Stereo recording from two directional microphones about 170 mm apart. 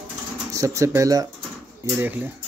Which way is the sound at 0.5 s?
20° right (ahead or behind).